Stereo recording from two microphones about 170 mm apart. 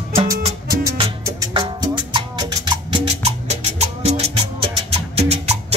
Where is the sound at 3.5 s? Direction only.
40° right (ahead or behind).